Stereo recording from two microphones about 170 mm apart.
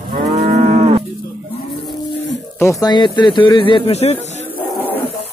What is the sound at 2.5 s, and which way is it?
Speech, 20° left (ahead or behind).